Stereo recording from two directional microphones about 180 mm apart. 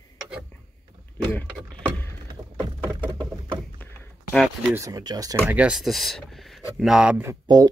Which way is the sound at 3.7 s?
10° left (ahead or behind).